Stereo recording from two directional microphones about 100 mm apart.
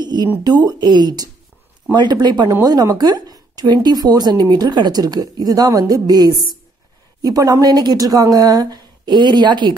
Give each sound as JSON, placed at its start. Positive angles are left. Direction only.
{"t": 0.0, "sound": "speech", "side_deg": -45}